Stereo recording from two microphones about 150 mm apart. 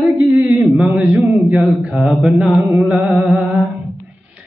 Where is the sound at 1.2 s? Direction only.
Centre (ahead or behind).